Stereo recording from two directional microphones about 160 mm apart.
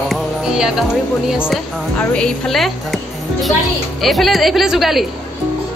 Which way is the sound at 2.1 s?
5° left (ahead or behind).